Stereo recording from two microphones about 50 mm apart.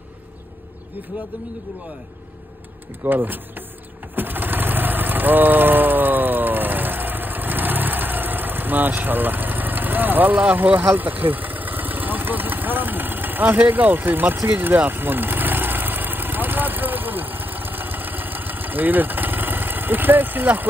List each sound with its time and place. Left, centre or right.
3.0 s speech: right
4.1 s vehicle: right